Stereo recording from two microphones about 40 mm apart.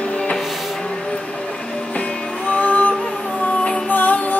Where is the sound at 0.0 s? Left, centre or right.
Left.